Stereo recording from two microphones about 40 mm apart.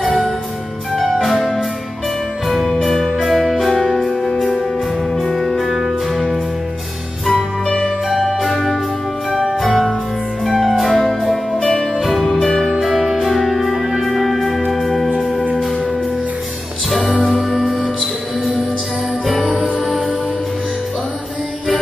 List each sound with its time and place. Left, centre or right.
0.9 s music: centre
5.8 s music: centre
7.6 s music: centre
8.3 s music: centre
11.0 s music: centre
12.8 s music: centre
16.9 s music: centre